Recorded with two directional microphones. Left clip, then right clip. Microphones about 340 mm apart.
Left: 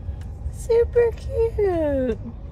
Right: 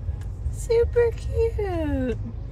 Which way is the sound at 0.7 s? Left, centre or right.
Centre.